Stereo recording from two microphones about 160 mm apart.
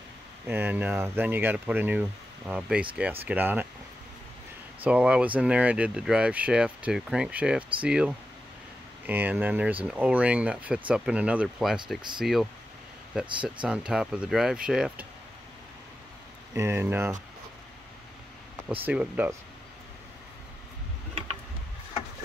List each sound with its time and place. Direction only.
0.5 s speech: 10° right (ahead or behind)
4.8 s speech: 5° right (ahead or behind)
13.6 s speech: 5° right (ahead or behind)
16.5 s speech: 15° right (ahead or behind)
18.8 s speech: 10° right (ahead or behind)